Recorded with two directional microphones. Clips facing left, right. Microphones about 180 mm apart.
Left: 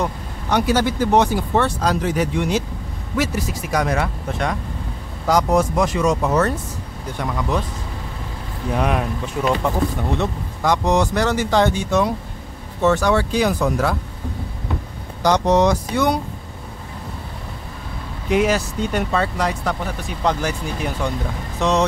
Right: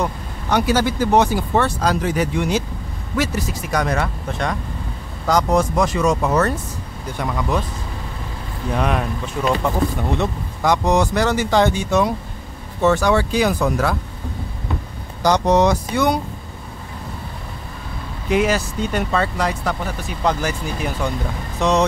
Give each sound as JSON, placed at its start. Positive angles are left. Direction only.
{"t": 0.0, "sound": "speech", "side_deg": 0}
{"t": 8.7, "sound": "speech", "side_deg": 10}
{"t": 10.1, "sound": "speech", "side_deg": -15}
{"t": 15.2, "sound": "speech", "side_deg": 0}
{"t": 18.3, "sound": "speech", "side_deg": 0}